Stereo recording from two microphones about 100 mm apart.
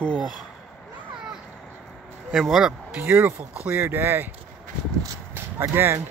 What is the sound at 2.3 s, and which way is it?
Speech, 5° right (ahead or behind).